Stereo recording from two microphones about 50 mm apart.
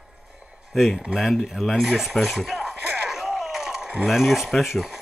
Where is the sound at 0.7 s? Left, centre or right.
Centre.